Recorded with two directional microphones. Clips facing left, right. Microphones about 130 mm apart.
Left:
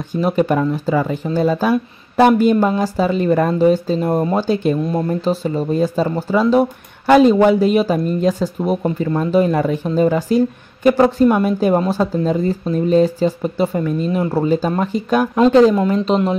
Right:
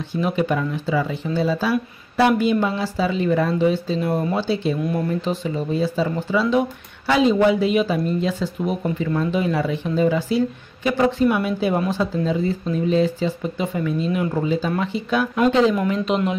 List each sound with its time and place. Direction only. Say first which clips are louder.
0.1 s speech: left 5 dB; 45° left (ahead or behind)